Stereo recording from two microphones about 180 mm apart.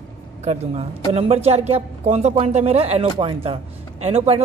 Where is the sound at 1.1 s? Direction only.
35° right (ahead or behind).